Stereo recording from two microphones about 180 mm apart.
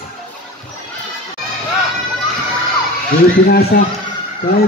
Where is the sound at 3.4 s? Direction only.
60° left (ahead or behind).